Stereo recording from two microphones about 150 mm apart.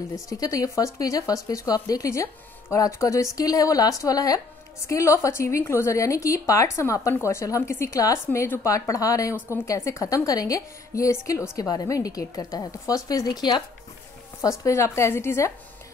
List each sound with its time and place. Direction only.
0.1 s speech: 25° left (ahead or behind)
14.6 s a woman's voice: 20° left (ahead or behind)